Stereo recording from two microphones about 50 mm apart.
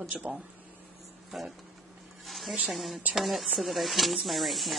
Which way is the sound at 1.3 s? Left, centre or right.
Centre.